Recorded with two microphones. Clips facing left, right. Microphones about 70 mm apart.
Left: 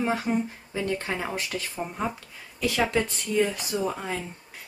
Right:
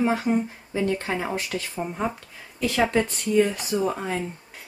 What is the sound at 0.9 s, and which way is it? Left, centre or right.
A woman's voice, centre.